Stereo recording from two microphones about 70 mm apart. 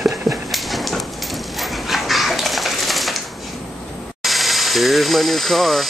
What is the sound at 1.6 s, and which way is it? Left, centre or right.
Dog, centre.